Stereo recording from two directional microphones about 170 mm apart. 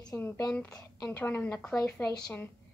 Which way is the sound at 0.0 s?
20° left (ahead or behind).